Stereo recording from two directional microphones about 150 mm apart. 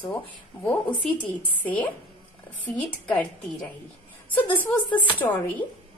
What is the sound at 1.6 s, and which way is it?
Speech, 10° left (ahead or behind).